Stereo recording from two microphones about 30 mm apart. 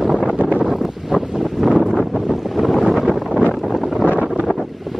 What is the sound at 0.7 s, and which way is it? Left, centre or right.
Wind, centre.